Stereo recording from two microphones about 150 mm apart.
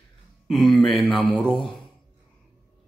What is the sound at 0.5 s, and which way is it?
A man's voice, centre (ahead or behind).